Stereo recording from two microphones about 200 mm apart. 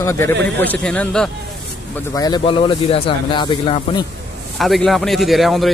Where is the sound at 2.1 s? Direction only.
20° left (ahead or behind).